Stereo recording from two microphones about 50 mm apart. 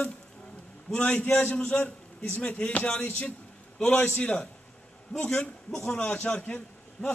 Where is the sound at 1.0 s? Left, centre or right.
Left.